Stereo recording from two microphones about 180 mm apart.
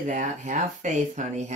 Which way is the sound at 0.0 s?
45° right (ahead or behind).